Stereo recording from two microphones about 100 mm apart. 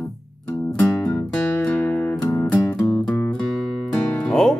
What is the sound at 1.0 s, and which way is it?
Music, 15° left (ahead or behind).